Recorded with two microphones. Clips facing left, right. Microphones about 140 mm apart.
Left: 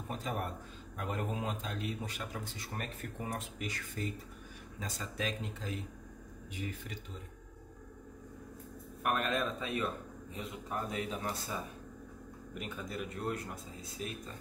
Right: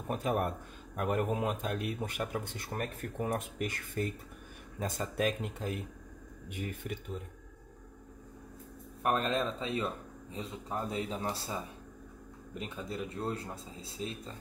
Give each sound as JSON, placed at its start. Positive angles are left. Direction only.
{"t": 0.1, "sound": "a man's voice", "side_deg": -55}
{"t": 9.0, "sound": "speech", "side_deg": -30}
{"t": 12.5, "sound": "speech", "side_deg": -30}